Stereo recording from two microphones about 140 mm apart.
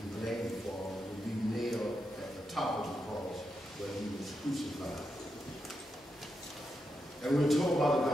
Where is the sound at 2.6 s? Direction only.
Centre (ahead or behind).